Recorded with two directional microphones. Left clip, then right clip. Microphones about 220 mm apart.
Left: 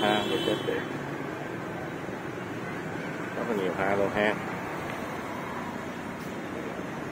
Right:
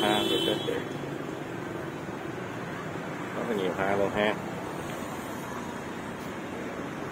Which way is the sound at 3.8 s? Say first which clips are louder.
Left 1 dB; centre (ahead or behind).